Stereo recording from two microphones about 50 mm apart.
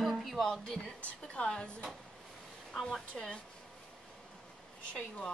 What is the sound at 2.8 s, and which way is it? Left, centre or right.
Speech, centre.